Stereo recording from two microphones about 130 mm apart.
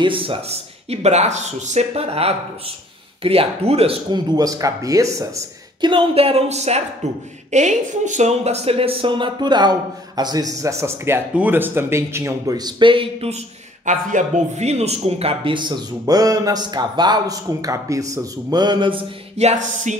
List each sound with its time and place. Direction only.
0.0 s speech: 40° right (ahead or behind)
4.1 s speech: 30° right (ahead or behind)
5.8 s speech: 40° right (ahead or behind); by 6.8 s 55° right (ahead or behind)
7.5 s speech: 65° right (ahead or behind); by 13.4 s 45° right (ahead or behind)
13.8 s speech: 70° right (ahead or behind); by 19.0 s 40° right (ahead or behind)
19.3 s music: 60° right (ahead or behind)